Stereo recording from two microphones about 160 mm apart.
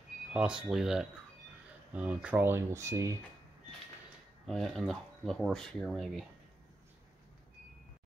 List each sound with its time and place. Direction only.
0.3 s speech: 5° right (ahead or behind)
4.5 s speech: centre (ahead or behind)